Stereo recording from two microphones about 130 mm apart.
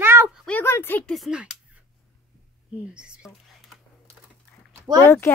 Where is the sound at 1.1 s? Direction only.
Centre (ahead or behind).